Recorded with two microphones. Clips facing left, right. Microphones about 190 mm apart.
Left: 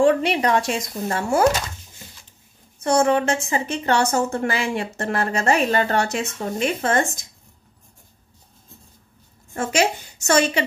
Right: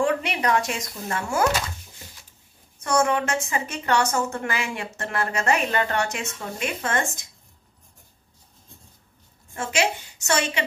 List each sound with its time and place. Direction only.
0.0 s a woman's voice: 30° left (ahead or behind)
2.8 s a woman's voice: 30° left (ahead or behind)
9.5 s a woman's voice: 45° left (ahead or behind)